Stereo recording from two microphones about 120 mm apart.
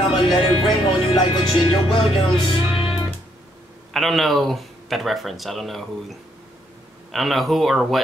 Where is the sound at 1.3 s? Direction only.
45° left (ahead or behind).